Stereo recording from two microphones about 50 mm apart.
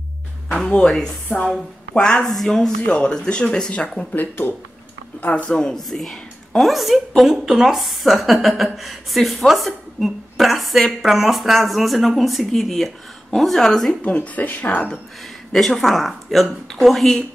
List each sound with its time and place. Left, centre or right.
0.7 s a woman's voice: centre
4.1 s speech: left
5.2 s a woman's voice: left
5.8 s a woman's voice: centre
14.0 s speech: left
15.5 s a woman's voice: centre